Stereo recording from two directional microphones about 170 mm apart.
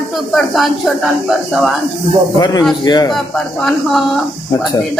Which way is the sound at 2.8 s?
25° left (ahead or behind).